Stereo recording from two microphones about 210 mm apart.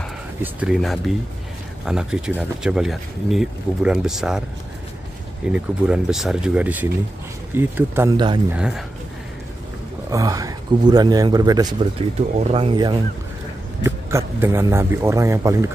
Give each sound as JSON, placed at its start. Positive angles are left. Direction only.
{"t": 0.4, "sound": "speech", "side_deg": -5}
{"t": 5.5, "sound": "speech", "side_deg": -5}
{"t": 10.0, "sound": "speech", "side_deg": -15}
{"t": 12.4, "sound": "speech", "side_deg": -30}
{"t": 13.8, "sound": "speech", "side_deg": -15}